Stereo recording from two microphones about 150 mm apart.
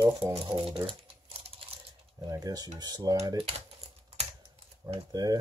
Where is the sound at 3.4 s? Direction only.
40° right (ahead or behind).